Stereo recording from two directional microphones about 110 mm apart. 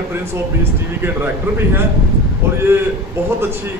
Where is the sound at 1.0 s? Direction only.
20° right (ahead or behind).